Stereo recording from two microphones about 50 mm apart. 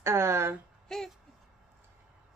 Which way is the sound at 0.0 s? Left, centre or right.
Right.